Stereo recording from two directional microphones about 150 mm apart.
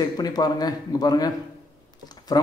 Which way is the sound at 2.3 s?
25° left (ahead or behind).